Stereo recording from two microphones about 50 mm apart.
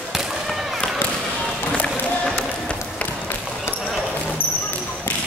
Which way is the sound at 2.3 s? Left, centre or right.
Left.